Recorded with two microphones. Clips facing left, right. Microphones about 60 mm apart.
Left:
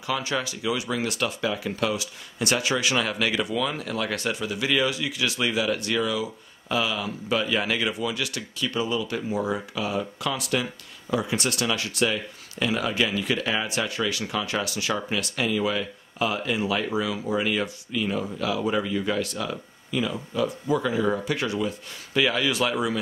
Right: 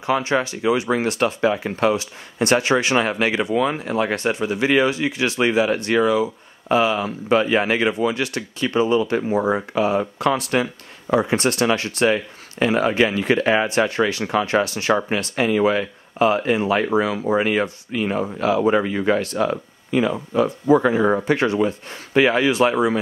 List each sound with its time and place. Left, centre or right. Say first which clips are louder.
0.0 s speech: right 7 dB; right